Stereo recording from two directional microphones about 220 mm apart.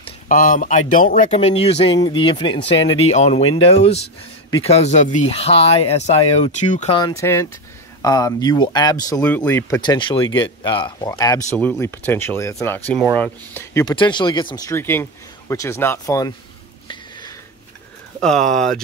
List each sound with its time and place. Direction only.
0.3 s speech: 40° left (ahead or behind)
7.0 s speech: 15° left (ahead or behind)
9.1 s speech: 5° left (ahead or behind)
16.8 s a sound: 20° left (ahead or behind)
18.2 s speech: centre (ahead or behind)